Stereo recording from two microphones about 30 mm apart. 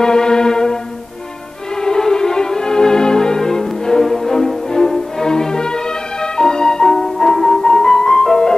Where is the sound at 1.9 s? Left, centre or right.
Centre.